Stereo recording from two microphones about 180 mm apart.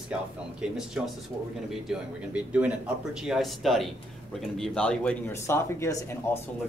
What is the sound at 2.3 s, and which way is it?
Speech, 10° right (ahead or behind).